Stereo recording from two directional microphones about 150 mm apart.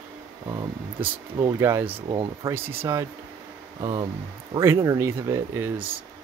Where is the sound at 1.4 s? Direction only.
15° right (ahead or behind).